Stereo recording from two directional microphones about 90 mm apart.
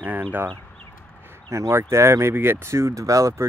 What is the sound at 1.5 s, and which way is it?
Speech, 30° right (ahead or behind).